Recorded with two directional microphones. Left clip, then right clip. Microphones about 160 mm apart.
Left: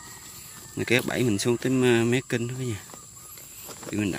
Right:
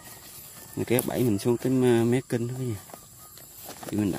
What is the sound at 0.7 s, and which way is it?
Speech, 15° right (ahead or behind).